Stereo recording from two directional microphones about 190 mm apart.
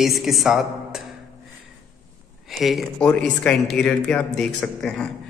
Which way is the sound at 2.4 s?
Centre (ahead or behind).